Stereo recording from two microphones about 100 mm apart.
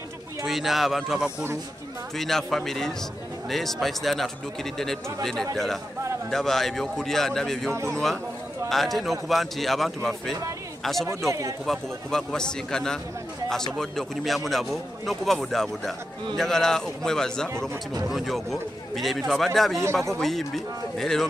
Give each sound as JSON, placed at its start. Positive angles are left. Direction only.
{"t": 0.5, "sound": "a man's voice", "side_deg": 0}
{"t": 7.7, "sound": "a man's voice", "side_deg": -30}
{"t": 8.6, "sound": "a man's voice", "side_deg": 0}
{"t": 11.1, "sound": "speech", "side_deg": -30}
{"t": 11.6, "sound": "a man's voice", "side_deg": 5}